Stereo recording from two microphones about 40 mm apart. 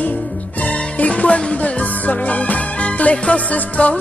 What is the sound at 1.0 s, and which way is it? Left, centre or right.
Music, left.